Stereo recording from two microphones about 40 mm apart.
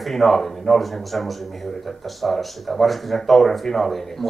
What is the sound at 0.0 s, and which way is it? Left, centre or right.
A man's voice, centre.